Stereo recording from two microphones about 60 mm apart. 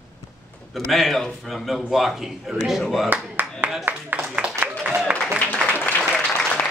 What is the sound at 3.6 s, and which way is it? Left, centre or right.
Speech, right.